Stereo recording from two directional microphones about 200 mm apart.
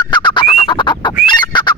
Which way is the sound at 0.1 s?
25° left (ahead or behind).